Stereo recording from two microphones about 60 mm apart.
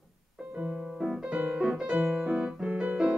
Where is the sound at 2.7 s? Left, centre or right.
Right.